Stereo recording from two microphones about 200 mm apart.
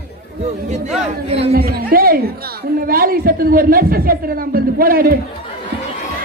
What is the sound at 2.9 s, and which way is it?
A woman's voice, 45° right (ahead or behind).